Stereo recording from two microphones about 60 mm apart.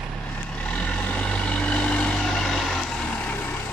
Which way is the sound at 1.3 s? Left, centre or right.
Left.